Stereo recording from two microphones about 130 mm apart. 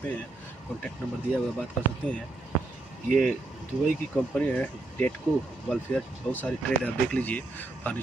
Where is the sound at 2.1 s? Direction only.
10° left (ahead or behind).